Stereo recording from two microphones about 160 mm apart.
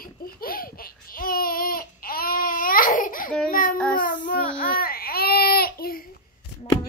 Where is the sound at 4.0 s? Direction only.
55° left (ahead or behind).